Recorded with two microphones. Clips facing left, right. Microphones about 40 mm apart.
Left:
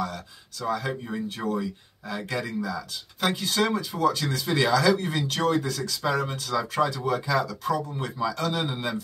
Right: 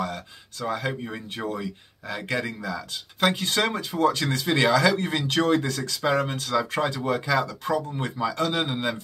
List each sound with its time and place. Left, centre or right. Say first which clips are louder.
0.0 s speech: right 1 dB; right
1.0 s speech: left 1 dB; right